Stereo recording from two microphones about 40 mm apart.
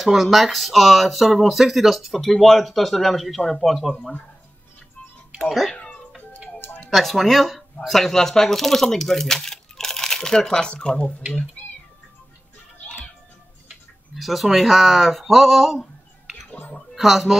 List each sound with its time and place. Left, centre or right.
0.0 s speech: centre
5.4 s speech: centre
6.9 s speech: centre
11.0 s speech: left
14.1 s speech: centre
16.9 s speech: centre